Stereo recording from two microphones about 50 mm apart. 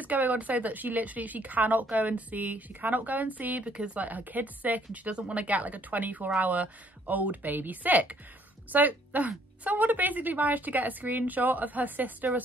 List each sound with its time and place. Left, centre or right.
0.0 s a woman's voice: right